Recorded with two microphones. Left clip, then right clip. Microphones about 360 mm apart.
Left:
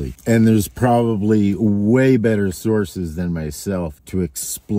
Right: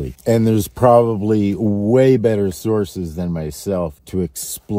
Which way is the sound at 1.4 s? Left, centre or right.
Centre.